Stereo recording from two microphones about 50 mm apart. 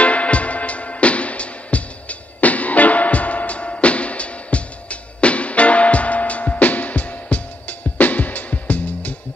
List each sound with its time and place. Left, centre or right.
0.0 s music: left